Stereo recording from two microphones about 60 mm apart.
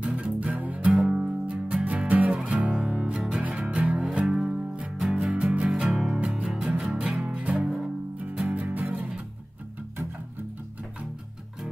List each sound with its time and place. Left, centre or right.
0.0 s music: right
1.0 s music: centre
3.4 s music: right
4.3 s music: centre
7.6 s music: centre
8.5 s music: right